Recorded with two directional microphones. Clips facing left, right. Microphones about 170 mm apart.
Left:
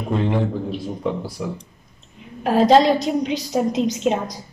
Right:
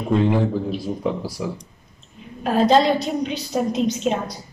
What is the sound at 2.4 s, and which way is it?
A woman's voice, 20° left (ahead or behind).